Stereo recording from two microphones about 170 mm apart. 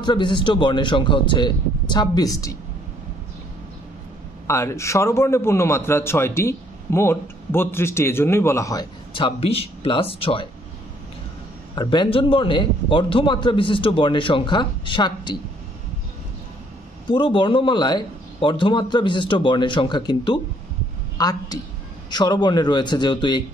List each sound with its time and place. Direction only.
0.0 s a man's voice: 25° left (ahead or behind)
4.5 s a man's voice: 15° left (ahead or behind)
9.1 s speech: 35° left (ahead or behind)
11.7 s a man's voice: 25° left (ahead or behind)
17.1 s a man's voice: 30° left (ahead or behind)